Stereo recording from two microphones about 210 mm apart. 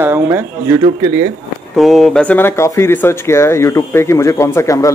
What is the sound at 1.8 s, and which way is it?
Speech, centre (ahead or behind).